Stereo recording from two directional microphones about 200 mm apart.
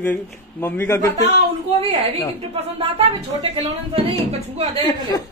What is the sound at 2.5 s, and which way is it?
Speech, 30° right (ahead or behind).